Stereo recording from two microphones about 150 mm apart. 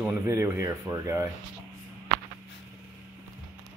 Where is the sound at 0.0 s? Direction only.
20° right (ahead or behind).